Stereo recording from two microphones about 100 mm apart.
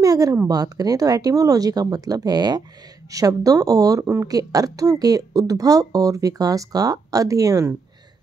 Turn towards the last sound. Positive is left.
turn(degrees=-35)  # may be behind; listen again after turning